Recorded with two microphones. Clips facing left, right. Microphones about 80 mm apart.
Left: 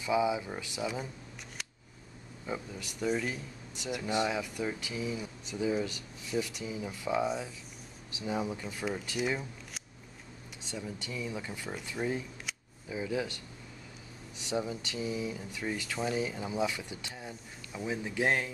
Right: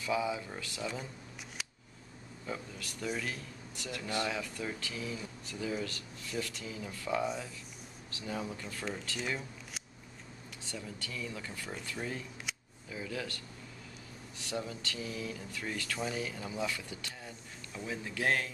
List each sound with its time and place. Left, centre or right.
0.0 s speech: centre
2.4 s speech: centre
10.6 s speech: centre